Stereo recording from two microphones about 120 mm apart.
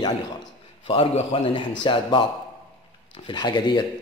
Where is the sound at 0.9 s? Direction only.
50° left (ahead or behind).